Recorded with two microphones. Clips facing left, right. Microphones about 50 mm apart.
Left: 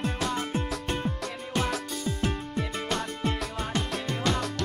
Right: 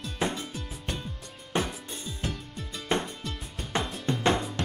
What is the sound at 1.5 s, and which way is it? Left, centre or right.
Music, right.